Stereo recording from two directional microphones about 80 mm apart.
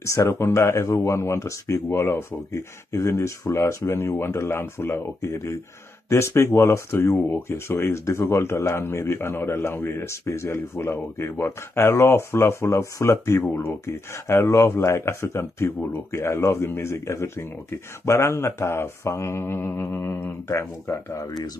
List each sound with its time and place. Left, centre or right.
0.0 s speech: left